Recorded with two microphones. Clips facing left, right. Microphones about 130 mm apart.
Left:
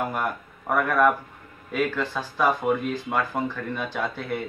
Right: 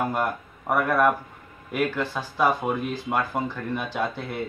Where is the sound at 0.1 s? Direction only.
15° right (ahead or behind).